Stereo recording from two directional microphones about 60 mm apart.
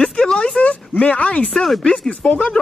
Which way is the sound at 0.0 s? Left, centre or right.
Centre.